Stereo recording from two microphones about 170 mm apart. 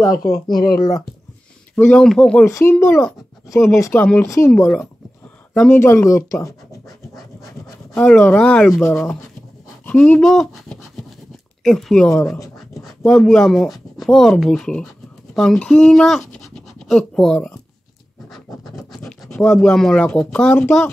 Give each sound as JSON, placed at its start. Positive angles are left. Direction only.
{"t": 0.6, "sound": "speech", "side_deg": 55}
{"t": 1.8, "sound": "speech", "side_deg": 5}
{"t": 2.4, "sound": "speech", "side_deg": 15}
{"t": 7.2, "sound": "speech", "side_deg": 0}
{"t": 18.8, "sound": "scratch", "side_deg": 0}
{"t": 19.4, "sound": "speech", "side_deg": 5}